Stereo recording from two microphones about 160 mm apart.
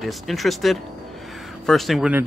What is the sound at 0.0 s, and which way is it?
Speech, centre (ahead or behind).